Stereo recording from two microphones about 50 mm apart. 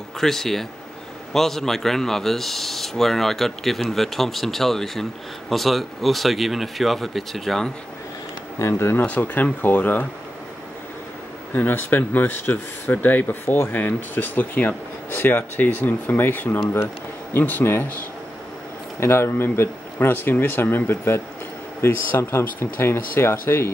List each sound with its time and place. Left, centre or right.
0.2 s speech: centre
8.5 s speech: left
9.2 s speech: left
11.5 s speech: left
18.9 s speech: left